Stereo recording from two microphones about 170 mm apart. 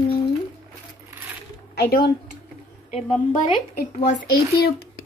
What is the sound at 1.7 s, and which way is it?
Speech, 65° left (ahead or behind).